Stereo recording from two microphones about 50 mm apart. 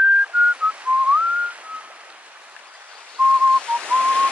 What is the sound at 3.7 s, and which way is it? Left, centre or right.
Whistling, left.